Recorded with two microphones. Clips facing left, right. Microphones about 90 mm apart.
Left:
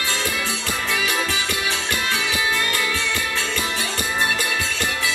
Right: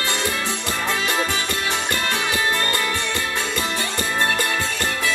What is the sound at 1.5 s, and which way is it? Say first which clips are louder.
Music: right 1 dB; 15° left (ahead or behind).